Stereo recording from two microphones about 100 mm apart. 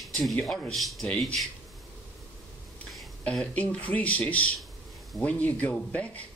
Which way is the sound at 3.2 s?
10° left (ahead or behind).